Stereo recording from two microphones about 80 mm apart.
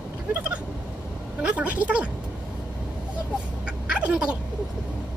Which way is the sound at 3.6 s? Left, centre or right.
Centre.